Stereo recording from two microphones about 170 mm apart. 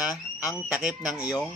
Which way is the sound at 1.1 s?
20° left (ahead or behind).